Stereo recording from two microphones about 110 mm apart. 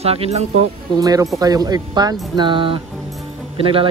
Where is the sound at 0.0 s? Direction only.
65° right (ahead or behind).